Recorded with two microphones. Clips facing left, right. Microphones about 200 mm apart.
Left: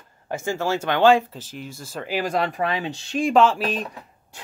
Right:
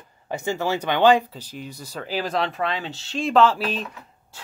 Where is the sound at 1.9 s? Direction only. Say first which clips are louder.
Left 2 dB; 10° left (ahead or behind).